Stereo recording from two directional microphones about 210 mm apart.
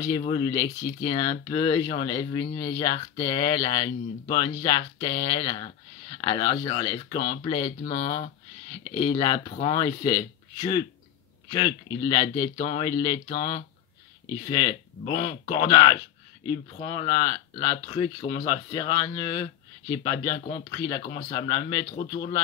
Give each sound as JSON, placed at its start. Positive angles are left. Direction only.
{"t": 0.2, "sound": "speech", "side_deg": 25}
{"t": 8.9, "sound": "speech", "side_deg": 20}